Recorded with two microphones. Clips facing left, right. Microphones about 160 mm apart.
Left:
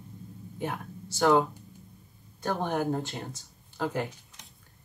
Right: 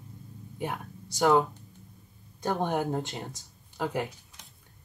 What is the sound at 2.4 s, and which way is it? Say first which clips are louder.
Speech: right 1 dB; 15° right (ahead or behind).